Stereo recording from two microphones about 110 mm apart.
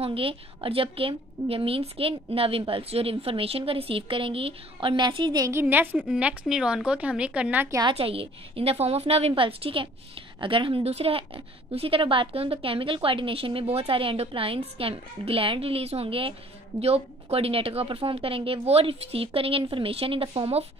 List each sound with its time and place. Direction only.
0.0 s a woman's voice: 55° right (ahead or behind); by 5.5 s 40° right (ahead or behind)
5.5 s speech: 20° right (ahead or behind)
7.9 s a woman's voice: 60° right (ahead or behind)